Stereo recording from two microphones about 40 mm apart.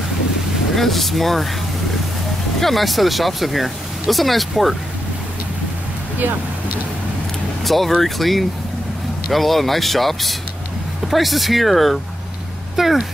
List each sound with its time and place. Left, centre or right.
0.7 s speech: centre
2.6 s speech: centre
7.6 s speech: centre